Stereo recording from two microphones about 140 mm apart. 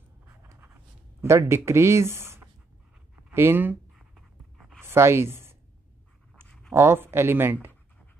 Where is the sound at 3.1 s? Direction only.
15° right (ahead or behind).